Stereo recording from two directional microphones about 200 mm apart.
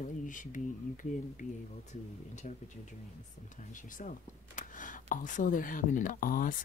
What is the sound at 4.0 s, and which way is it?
Speech, 40° left (ahead or behind).